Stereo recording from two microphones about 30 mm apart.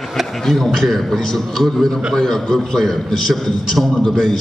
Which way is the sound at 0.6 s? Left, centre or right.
Centre.